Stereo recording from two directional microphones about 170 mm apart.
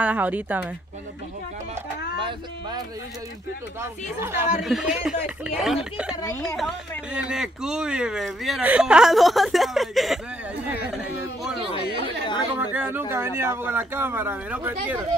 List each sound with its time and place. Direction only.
0.0 s speech: 10° right (ahead or behind)
2.1 s a sound: 30° right (ahead or behind)
3.8 s speech: 15° right (ahead or behind)
12.5 s speech: 10° right (ahead or behind)